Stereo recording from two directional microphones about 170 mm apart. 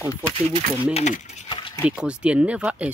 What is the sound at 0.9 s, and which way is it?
Speech, 45° left (ahead or behind).